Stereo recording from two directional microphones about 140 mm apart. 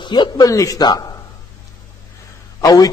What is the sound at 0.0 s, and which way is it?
A man's voice, 35° left (ahead or behind).